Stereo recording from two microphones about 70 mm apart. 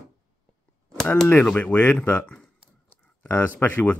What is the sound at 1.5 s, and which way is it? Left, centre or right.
Speech, left.